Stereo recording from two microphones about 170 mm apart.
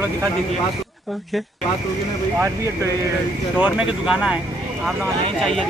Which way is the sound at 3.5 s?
5° right (ahead or behind).